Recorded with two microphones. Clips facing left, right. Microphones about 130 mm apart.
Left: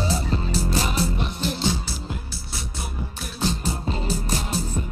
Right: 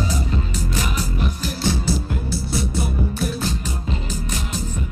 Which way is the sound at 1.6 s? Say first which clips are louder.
Right 4 dB; 15° left (ahead or behind).